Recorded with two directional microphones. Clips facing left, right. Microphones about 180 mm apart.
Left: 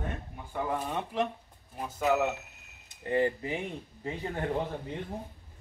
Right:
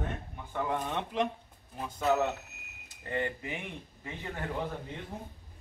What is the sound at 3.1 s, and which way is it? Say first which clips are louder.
Speech: left 6 dB; 30° left (ahead or behind).